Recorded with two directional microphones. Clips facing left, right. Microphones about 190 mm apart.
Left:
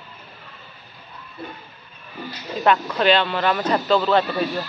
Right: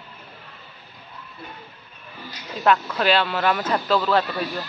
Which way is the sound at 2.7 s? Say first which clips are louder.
Left 2 dB; centre (ahead or behind).